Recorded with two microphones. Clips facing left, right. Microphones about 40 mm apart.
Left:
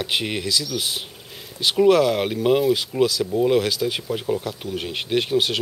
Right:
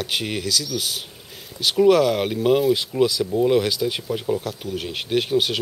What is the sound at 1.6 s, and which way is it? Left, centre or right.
Speech, centre.